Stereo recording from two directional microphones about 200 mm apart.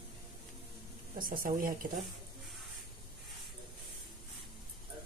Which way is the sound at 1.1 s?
45° right (ahead or behind).